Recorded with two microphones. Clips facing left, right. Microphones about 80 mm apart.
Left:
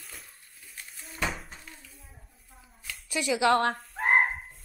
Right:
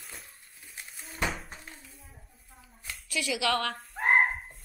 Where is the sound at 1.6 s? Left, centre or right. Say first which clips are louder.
Right 1 dB; right.